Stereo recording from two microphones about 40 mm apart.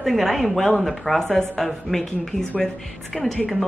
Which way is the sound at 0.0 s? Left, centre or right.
Centre.